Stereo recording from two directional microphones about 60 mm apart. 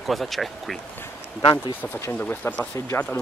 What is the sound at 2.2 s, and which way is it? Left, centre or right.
Speech, left.